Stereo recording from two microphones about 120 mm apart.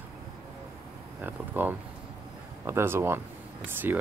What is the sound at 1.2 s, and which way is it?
Speech, 15° right (ahead or behind).